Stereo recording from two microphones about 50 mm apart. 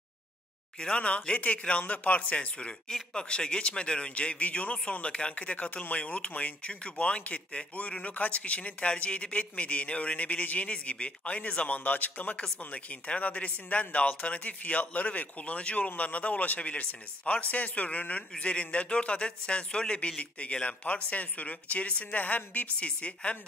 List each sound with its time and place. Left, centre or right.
0.7 s a man's voice: left